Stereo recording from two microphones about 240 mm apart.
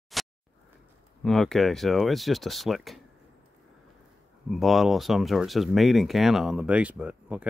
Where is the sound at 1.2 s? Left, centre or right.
Centre.